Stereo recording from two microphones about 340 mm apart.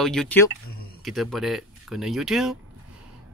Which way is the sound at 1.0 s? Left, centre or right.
Centre.